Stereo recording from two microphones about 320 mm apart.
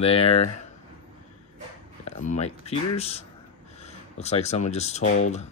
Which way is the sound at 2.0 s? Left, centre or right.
Left.